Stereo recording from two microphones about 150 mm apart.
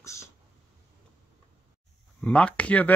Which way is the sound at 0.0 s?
20° left (ahead or behind).